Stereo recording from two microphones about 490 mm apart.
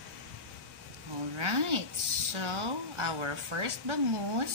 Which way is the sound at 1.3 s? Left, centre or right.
Right.